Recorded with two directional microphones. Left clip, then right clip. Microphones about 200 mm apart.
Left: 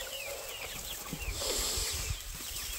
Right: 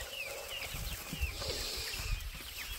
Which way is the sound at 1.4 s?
25° left (ahead or behind).